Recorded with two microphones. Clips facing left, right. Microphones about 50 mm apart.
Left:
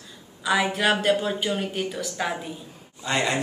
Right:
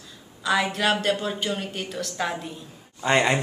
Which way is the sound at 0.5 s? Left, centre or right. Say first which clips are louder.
Left 1 dB; centre.